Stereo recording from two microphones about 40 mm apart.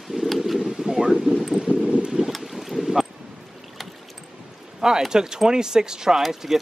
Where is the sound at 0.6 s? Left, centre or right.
Centre.